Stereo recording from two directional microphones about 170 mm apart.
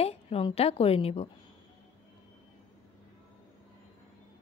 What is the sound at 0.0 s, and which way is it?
A woman's voice, 35° left (ahead or behind).